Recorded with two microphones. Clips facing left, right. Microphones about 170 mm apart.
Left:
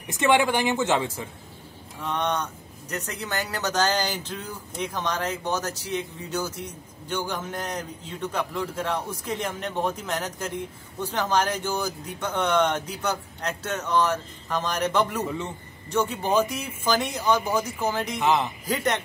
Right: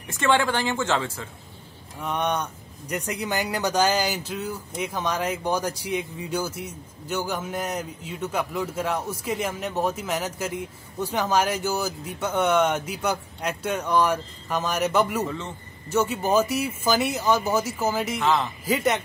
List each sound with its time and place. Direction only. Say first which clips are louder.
0.1 s a woman's voice: left 1 dB; 15° left (ahead or behind)
2.0 s speech: right 1 dB; 10° right (ahead or behind)
18.2 s a woman's voice: left 1 dB; 15° left (ahead or behind)
18.7 s speech: right 3 dB; 5° right (ahead or behind)